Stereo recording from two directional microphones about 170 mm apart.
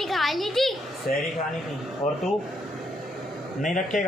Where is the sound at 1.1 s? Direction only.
50° left (ahead or behind).